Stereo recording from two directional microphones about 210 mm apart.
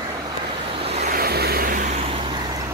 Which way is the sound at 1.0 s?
45° right (ahead or behind).